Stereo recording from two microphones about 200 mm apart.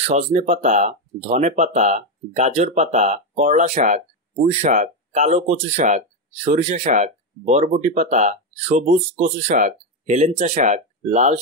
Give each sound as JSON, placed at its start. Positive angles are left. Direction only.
{"t": 0.0, "sound": "speech", "side_deg": -35}